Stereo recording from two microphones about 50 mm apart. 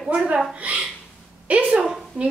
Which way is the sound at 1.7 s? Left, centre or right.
Centre.